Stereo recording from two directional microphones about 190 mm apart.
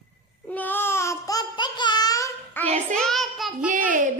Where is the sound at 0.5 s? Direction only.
10° left (ahead or behind).